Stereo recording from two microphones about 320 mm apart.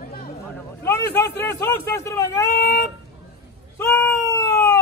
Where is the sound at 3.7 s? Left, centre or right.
Centre.